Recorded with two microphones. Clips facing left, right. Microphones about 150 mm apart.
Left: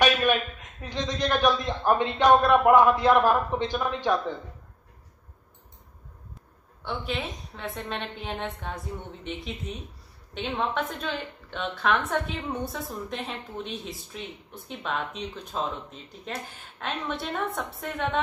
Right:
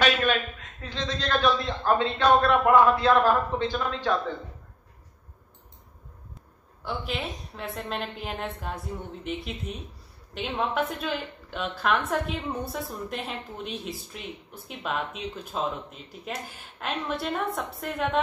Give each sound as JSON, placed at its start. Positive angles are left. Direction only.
{"t": 0.0, "sound": "a man's voice", "side_deg": 15}
{"t": 6.8, "sound": "a woman's voice", "side_deg": 0}